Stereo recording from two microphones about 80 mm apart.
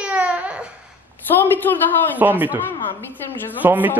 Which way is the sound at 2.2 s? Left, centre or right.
Right.